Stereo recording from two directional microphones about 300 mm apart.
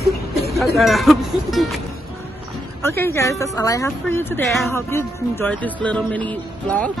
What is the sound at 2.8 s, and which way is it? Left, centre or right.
A woman's voice, centre.